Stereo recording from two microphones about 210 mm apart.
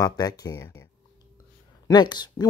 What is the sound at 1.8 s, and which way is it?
Speech, 20° left (ahead or behind).